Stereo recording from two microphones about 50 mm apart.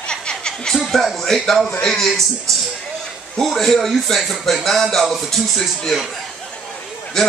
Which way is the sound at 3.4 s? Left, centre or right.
Centre.